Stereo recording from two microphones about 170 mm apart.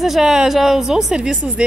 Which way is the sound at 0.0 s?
Centre (ahead or behind).